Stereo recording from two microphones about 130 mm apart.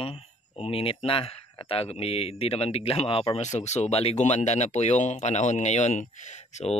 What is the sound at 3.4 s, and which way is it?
Speech, 60° left (ahead or behind).